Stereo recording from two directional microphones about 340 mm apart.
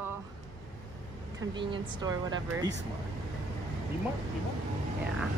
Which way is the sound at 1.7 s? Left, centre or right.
Centre.